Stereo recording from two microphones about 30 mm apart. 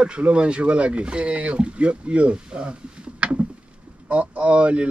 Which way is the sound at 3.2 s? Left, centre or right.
Right.